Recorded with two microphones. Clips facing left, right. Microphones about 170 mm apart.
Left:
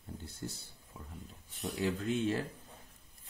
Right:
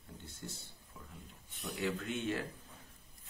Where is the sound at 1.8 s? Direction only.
35° left (ahead or behind).